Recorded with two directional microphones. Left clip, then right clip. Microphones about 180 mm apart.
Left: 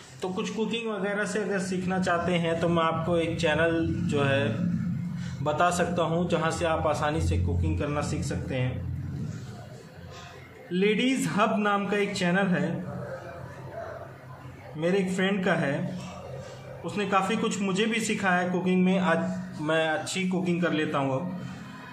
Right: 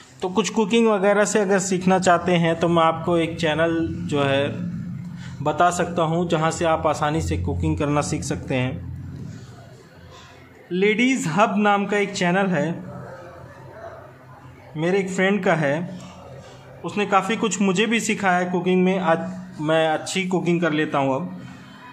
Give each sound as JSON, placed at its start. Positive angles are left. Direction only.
{"t": 0.4, "sound": "a man's voice", "side_deg": -55}
{"t": 10.7, "sound": "a man's voice", "side_deg": -35}
{"t": 14.8, "sound": "a man's voice", "side_deg": -35}
{"t": 16.8, "sound": "a man's voice", "side_deg": -35}